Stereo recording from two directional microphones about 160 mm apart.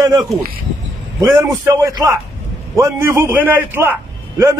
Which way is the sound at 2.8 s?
15° right (ahead or behind).